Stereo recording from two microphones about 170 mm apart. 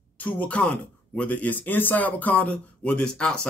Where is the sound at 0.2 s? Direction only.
10° left (ahead or behind).